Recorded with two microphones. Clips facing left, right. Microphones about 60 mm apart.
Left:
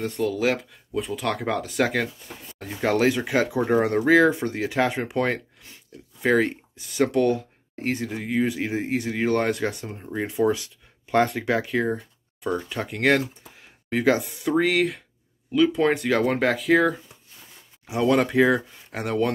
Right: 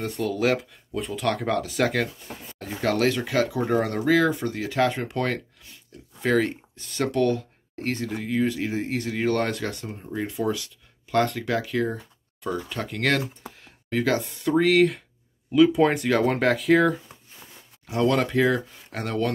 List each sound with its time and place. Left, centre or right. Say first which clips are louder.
0.0 s speech: left 1 dB; centre
2.8 s speech: left 2 dB; centre
13.6 s a sound: even; centre
14.2 s speech: right 1 dB; centre
17.8 s speech: left 1 dB; centre